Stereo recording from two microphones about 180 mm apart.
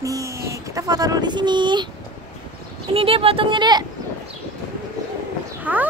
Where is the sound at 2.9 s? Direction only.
30° right (ahead or behind).